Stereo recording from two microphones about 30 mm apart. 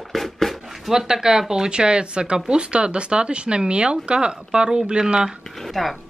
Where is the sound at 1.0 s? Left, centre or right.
Right.